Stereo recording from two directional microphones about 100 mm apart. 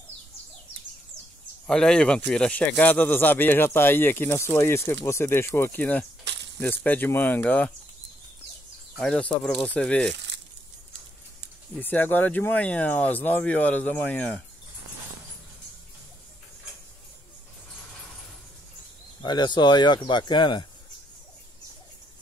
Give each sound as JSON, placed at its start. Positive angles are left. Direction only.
{"t": 1.7, "sound": "speech", "side_deg": 5}
{"t": 8.9, "sound": "speech", "side_deg": 10}
{"t": 11.7, "sound": "speech", "side_deg": 15}
{"t": 19.2, "sound": "speech", "side_deg": 45}